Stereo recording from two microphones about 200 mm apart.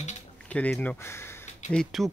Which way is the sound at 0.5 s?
5° left (ahead or behind).